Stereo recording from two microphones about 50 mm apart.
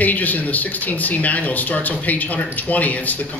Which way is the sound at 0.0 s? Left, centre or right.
Left.